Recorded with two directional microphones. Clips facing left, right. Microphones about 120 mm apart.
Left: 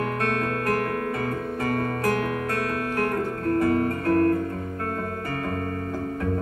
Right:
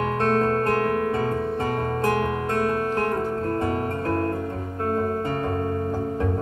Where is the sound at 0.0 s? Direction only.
30° right (ahead or behind).